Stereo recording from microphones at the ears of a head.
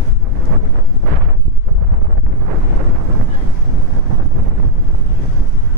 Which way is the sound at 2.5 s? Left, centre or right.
Right.